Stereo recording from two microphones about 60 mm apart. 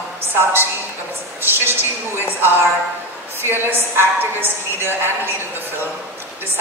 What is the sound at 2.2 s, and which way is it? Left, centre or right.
A woman's voice, right.